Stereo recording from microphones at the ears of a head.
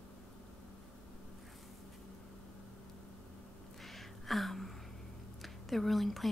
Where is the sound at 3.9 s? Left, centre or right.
Centre.